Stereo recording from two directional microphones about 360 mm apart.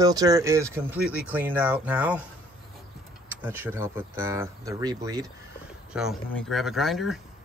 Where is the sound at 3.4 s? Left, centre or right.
Centre.